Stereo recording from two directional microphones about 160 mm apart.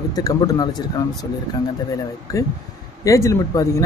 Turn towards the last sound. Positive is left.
turn(degrees=20)  # may be behind; listen again after turning